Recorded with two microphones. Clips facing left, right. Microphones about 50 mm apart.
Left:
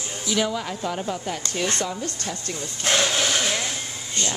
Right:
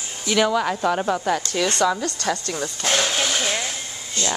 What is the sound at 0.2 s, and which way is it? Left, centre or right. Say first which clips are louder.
A woman's voice: right 6 dB; right.